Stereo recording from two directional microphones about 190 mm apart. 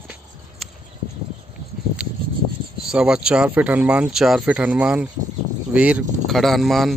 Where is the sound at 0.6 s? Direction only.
Centre (ahead or behind).